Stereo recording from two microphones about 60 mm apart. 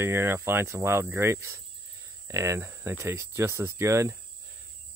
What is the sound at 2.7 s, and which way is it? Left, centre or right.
Speech, right.